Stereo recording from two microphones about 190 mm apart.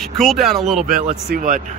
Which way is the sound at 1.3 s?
45° right (ahead or behind).